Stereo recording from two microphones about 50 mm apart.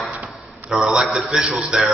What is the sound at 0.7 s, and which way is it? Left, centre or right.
A man's voice, centre.